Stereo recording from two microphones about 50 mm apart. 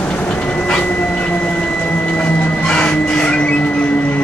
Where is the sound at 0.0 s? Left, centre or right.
Left.